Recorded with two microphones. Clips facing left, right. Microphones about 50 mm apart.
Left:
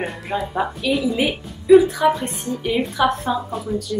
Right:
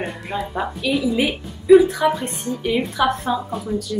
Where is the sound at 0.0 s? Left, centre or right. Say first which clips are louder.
Left 1 dB; centre.